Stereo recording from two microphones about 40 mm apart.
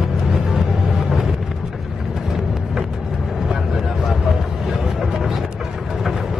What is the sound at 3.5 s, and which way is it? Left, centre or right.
Vehicle, centre.